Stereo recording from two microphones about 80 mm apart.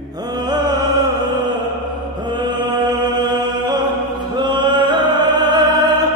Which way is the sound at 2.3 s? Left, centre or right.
Right.